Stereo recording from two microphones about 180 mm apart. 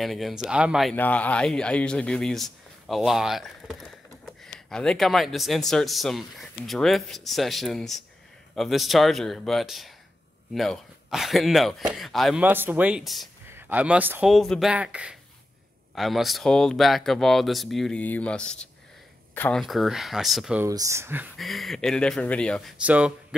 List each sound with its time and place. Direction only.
0.0 s speech: centre (ahead or behind)
0.9 s speech: 10° left (ahead or behind)
12.4 s speech: 10° right (ahead or behind)
13.5 s a man's voice: 10° right (ahead or behind)
20.6 s speech: 15° right (ahead or behind)
21.4 s speech: centre (ahead or behind)